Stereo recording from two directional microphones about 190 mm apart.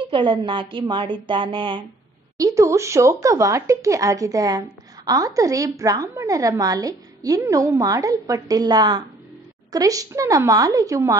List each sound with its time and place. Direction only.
0.0 s a woman's voice: 25° right (ahead or behind)